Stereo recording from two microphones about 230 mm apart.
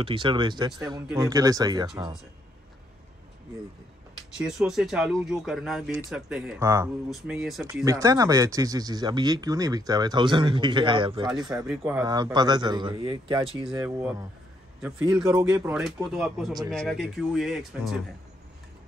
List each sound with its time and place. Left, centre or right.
0.0 s speech: right
4.4 s speech: centre
7.8 s speech: centre
11.7 s speech: centre
12.0 s speech: centre
13.7 s speech: centre